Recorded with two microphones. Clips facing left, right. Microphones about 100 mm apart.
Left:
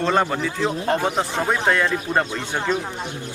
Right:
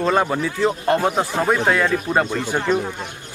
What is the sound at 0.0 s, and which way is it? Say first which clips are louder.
A man's voice: right 1 dB; 5° right (ahead or behind).